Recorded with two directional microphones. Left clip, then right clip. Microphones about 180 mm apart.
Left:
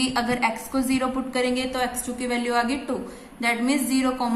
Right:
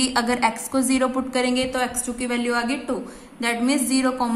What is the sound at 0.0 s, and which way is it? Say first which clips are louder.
A woman's voice: right 3 dB; 20° right (ahead or behind).